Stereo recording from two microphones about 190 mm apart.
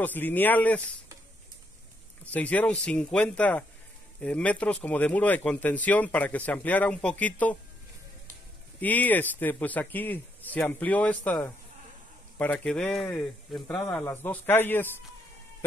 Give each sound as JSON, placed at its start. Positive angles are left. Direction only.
{"t": 0.0, "sound": "speech", "side_deg": 10}
{"t": 2.3, "sound": "speech", "side_deg": 10}
{"t": 8.8, "sound": "speech", "side_deg": 10}
{"t": 13.8, "sound": "speech", "side_deg": 10}